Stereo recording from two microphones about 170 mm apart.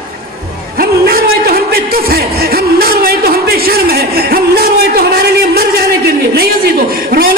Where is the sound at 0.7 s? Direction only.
60° right (ahead or behind).